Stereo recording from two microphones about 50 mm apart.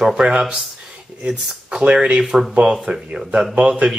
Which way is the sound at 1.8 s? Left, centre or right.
Right.